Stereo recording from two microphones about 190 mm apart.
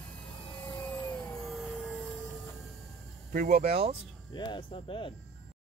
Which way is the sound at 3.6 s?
30° right (ahead or behind).